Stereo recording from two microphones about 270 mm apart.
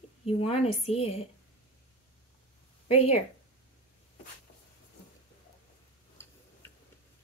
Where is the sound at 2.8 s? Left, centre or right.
Left.